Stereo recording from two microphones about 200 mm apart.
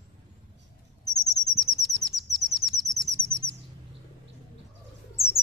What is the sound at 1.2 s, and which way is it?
Bird vocalization, centre (ahead or behind).